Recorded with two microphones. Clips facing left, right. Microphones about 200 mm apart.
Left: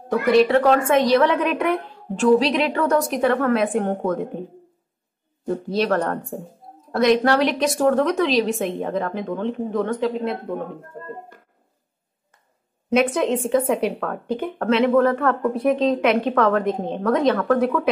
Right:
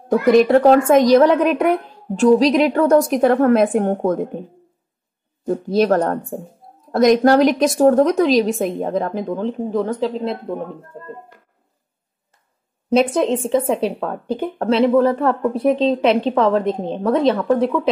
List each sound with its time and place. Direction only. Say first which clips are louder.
0.1 s a woman's voice: right 4 dB; 45° right (ahead or behind)
5.4 s a woman's voice: right 5 dB; 45° right (ahead or behind)
12.9 s a woman's voice: right 3 dB; 35° right (ahead or behind)